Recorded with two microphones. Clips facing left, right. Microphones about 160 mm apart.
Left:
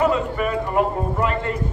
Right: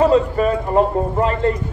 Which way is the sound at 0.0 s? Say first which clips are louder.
Right 6 dB; 30° right (ahead or behind).